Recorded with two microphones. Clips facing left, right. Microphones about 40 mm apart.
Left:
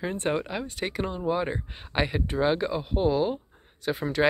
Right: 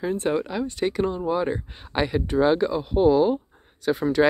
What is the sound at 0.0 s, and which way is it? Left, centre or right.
Speech, left.